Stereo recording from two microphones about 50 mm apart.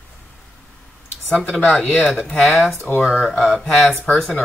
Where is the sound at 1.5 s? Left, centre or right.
Centre.